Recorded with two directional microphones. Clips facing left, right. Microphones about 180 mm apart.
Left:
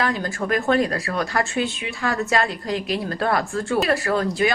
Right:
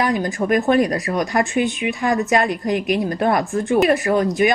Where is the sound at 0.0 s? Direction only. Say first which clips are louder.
Right 4 dB; 20° right (ahead or behind).